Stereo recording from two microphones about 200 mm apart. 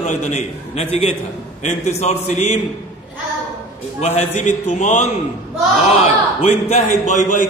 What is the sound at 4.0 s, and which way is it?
A man's voice, 35° left (ahead or behind).